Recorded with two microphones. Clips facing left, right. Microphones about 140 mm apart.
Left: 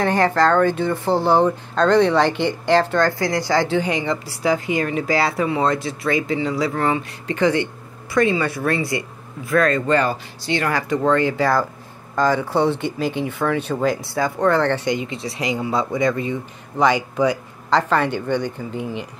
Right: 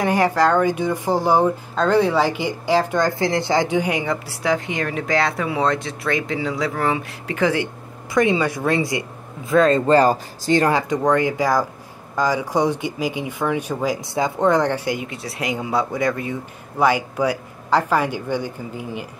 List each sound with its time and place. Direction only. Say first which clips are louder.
0.0 s speech: even; 10° right (ahead or behind)
8.1 s speech: even; 15° right (ahead or behind); by 10.7 s 40° right (ahead or behind)
10.7 s speech: even; 20° right (ahead or behind)